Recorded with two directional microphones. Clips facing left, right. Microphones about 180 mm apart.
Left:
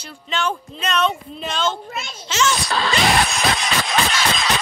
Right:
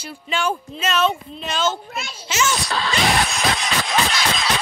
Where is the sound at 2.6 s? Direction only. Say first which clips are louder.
Left 2 dB; 80° left.